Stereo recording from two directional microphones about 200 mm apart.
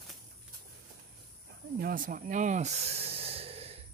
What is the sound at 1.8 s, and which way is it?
Speech, 45° right (ahead or behind).